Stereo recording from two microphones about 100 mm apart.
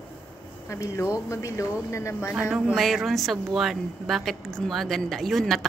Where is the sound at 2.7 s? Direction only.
Centre (ahead or behind).